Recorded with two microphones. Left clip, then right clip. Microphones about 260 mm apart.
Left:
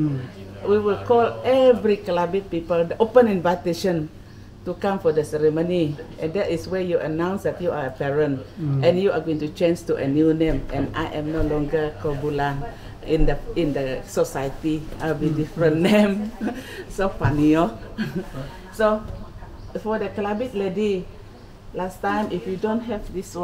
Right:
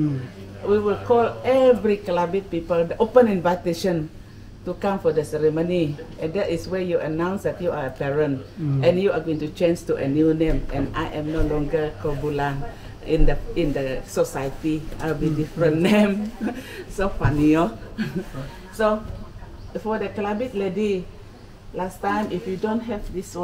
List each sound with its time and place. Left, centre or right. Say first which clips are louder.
0.7 s speech: left 1 dB; centre